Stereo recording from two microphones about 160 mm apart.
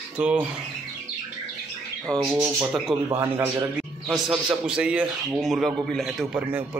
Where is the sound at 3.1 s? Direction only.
15° right (ahead or behind).